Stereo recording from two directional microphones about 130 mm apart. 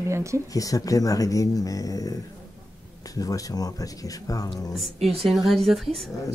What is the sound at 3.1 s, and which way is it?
Speech, 25° left (ahead or behind).